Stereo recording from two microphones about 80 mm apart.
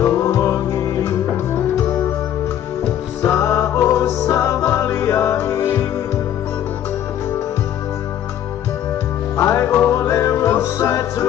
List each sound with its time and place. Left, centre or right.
0.0 s music: left
3.2 s music: left
9.4 s music: left